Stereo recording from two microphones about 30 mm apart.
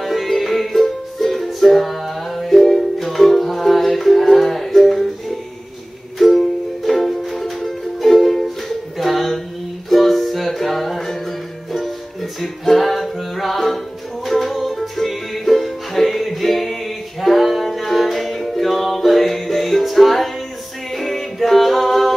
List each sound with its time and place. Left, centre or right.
0.0 s music: centre
6.1 s music: centre
8.9 s a sound: centre
9.8 s music: centre